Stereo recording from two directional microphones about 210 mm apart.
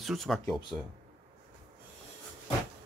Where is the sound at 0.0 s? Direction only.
Centre (ahead or behind).